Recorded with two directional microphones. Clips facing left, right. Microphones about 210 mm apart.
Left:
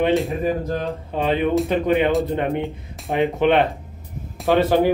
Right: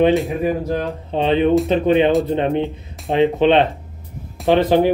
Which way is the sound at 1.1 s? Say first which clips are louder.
Right 4 dB; 25° right (ahead or behind).